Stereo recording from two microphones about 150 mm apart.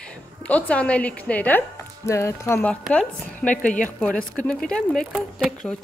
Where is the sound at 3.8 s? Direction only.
10° left (ahead or behind).